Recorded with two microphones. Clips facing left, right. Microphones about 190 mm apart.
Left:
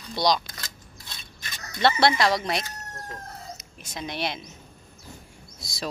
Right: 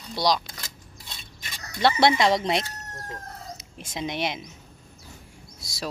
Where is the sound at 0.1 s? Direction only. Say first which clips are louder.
Even; 5° right (ahead or behind).